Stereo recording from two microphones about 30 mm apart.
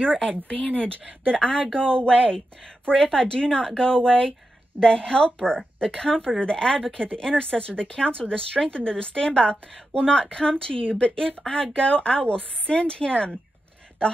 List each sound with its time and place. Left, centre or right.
0.0 s speech: left
0.5 s speech: left
1.2 s speech: left
1.9 s a woman's voice: left
9.5 s a woman's voice: left